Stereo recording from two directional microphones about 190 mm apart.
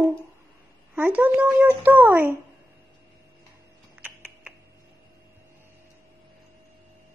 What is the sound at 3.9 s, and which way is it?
Typing, 10° right (ahead or behind).